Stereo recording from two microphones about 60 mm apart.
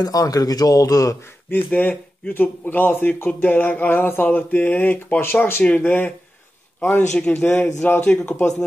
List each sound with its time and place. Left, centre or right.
0.0 s speech: left
1.8 s speech: left
8.0 s speech: centre